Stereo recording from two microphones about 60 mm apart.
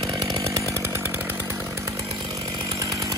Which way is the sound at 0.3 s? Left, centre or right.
Right.